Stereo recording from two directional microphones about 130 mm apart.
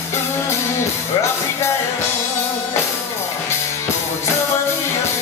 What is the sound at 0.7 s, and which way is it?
Music, 20° left (ahead or behind).